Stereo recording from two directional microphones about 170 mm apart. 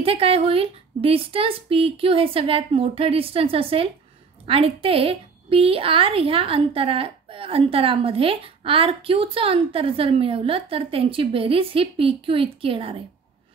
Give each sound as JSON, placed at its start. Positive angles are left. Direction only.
{"t": 0.0, "sound": "a woman's voice", "side_deg": -35}